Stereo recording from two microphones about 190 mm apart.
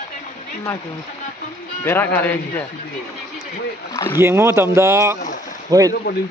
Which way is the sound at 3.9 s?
15° left (ahead or behind).